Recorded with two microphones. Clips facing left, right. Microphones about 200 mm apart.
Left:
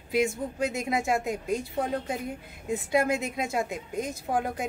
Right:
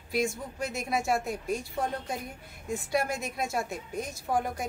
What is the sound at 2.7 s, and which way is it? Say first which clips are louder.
Speech: left 4 dB; 20° left (ahead or behind).